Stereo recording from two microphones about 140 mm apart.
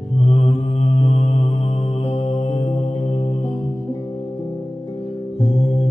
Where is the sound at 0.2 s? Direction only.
45° left (ahead or behind).